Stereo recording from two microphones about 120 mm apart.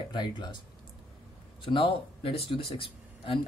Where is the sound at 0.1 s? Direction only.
40° left (ahead or behind).